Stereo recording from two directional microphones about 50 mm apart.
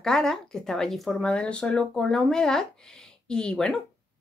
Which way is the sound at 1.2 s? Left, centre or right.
Left.